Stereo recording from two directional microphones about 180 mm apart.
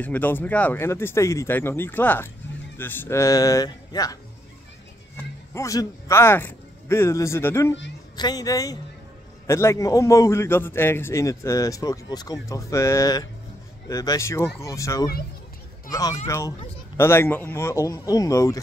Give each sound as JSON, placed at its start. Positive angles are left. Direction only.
{"t": 0.0, "sound": "a man's voice", "side_deg": 10}